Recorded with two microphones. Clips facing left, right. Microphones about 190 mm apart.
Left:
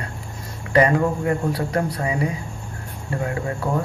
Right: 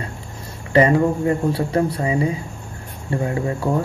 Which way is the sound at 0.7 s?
25° right (ahead or behind).